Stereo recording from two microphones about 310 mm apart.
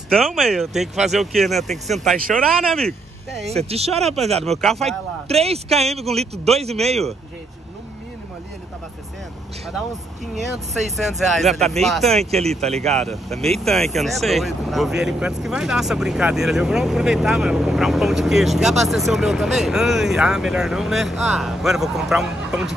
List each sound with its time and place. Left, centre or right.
0.1 s speech: centre
3.4 s speech: centre
4.5 s speech: centre
4.8 s speech: centre
10.4 s speech: centre